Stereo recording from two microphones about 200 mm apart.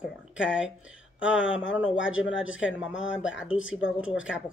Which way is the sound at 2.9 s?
70° left (ahead or behind).